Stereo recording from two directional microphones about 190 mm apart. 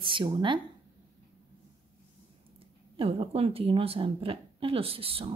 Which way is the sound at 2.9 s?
30° right (ahead or behind).